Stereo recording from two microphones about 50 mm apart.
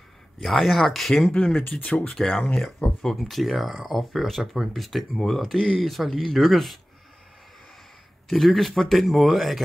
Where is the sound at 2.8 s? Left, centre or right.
Left.